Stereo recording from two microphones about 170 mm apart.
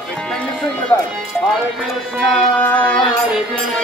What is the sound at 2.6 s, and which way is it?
Music, 10° left (ahead or behind).